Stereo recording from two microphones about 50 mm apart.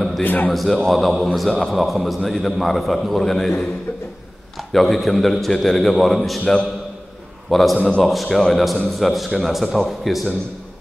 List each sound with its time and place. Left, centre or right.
0.2 s a man's voice: left
0.5 s a man's voice: centre
6.4 s a man's voice: centre
7.4 s a man's voice: centre